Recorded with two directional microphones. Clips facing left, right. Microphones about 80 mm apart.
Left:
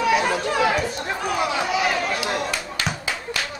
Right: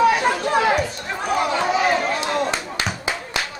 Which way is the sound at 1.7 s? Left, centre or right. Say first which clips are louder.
Right 3 dB; right.